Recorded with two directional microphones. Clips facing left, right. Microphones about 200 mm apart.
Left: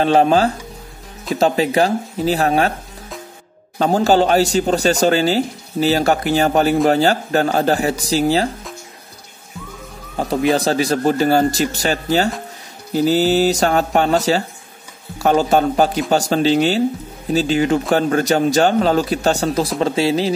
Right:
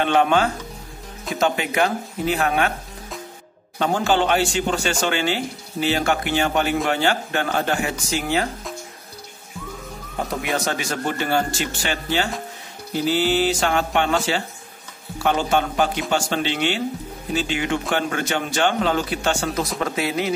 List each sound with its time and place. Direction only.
0.0 s a man's voice: 35° left (ahead or behind)
3.7 s a man's voice: 40° left (ahead or behind)
10.1 s a man's voice: 35° left (ahead or behind)